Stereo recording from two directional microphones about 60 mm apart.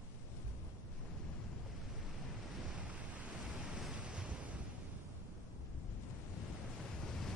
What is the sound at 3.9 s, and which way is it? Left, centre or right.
Waves, centre.